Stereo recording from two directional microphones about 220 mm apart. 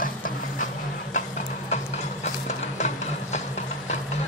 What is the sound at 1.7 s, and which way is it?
Clip-clop, 30° left (ahead or behind).